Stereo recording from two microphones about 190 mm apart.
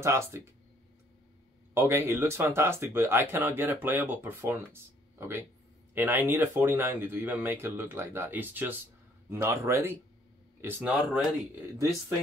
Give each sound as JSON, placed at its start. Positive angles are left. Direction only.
{"t": 0.0, "sound": "speech", "side_deg": -15}
{"t": 1.7, "sound": "speech", "side_deg": -15}
{"t": 11.0, "sound": "speech", "side_deg": 0}